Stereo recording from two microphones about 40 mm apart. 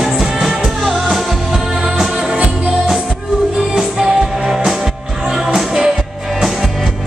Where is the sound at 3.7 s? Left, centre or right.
Centre.